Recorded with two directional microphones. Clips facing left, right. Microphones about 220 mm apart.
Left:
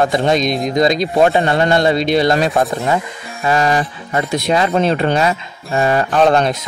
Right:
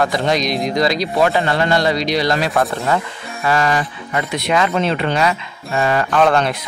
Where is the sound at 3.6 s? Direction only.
30° left (ahead or behind).